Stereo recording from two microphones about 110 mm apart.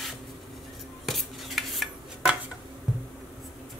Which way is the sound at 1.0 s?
Centre (ahead or behind).